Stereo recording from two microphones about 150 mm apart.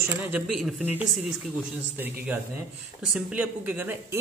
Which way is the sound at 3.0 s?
5° right (ahead or behind).